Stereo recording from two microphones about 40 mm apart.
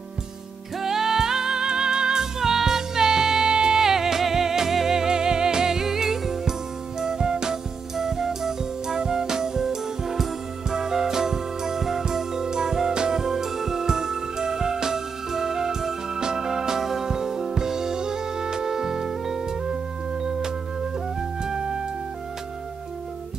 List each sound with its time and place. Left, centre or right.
0.7 s music: centre